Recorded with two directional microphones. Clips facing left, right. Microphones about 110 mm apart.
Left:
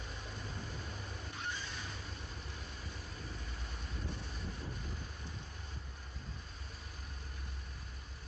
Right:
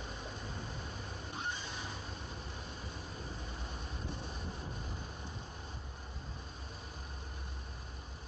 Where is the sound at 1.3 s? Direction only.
20° right (ahead or behind).